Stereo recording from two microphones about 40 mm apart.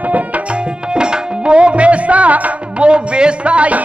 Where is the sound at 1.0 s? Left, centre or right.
Right.